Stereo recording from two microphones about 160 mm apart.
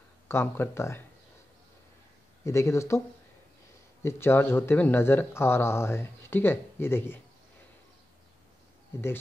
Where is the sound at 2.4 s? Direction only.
15° left (ahead or behind).